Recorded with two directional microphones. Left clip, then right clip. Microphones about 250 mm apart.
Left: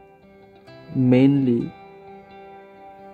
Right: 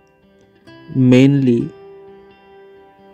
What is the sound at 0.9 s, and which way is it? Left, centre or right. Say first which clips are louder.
Speech: right 5 dB; right.